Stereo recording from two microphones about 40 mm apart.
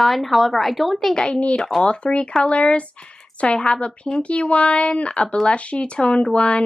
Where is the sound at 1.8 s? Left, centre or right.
Left.